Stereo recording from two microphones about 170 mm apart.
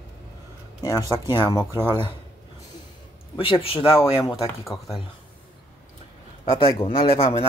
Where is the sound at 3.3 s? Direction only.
30° left (ahead or behind).